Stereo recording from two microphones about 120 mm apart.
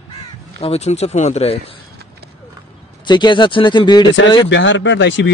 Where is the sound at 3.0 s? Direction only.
40° left (ahead or behind).